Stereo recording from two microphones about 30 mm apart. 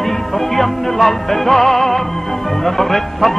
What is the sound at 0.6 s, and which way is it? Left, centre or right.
Music, centre.